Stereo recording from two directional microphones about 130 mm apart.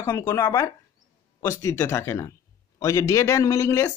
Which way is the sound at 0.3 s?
20° left (ahead or behind).